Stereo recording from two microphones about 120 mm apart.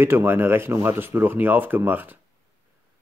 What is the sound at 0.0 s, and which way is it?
Speech, 20° right (ahead or behind).